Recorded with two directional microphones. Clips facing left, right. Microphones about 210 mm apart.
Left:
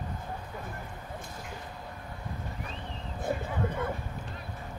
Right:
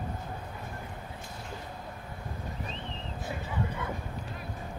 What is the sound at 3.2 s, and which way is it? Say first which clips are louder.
Vehicle: left 4 dB; 55° left (ahead or behind).